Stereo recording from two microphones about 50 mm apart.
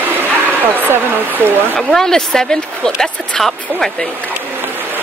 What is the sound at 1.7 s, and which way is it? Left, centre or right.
Speech, centre.